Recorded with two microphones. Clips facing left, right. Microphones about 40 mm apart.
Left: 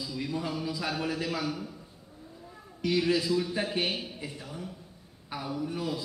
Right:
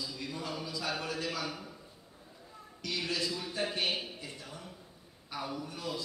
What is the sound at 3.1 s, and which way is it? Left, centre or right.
A woman's voice, centre.